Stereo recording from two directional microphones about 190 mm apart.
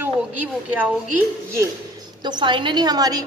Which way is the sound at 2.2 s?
25° right (ahead or behind).